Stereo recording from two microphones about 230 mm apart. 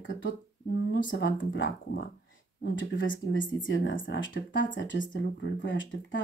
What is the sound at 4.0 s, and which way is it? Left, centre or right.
Speech, left.